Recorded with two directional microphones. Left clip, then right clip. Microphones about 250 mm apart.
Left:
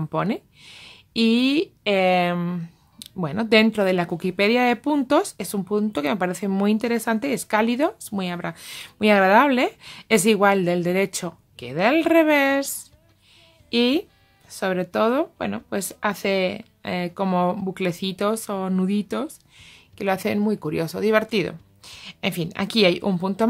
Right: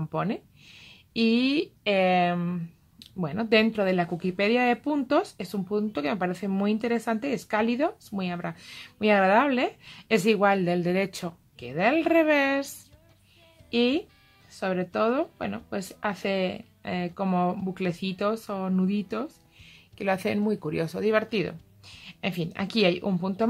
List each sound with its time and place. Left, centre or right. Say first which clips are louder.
0.0 s speech: left 5 dB; left